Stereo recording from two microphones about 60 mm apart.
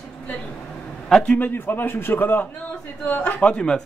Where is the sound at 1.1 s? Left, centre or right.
Centre.